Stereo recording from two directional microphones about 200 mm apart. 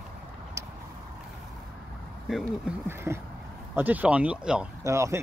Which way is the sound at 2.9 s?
10° right (ahead or behind).